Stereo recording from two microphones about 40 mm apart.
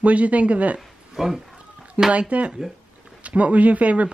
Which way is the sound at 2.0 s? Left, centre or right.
Right.